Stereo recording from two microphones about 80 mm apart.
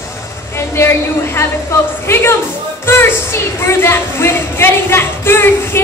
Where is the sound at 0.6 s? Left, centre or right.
Left.